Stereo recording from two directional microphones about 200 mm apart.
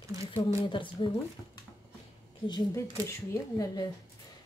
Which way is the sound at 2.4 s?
20° left (ahead or behind).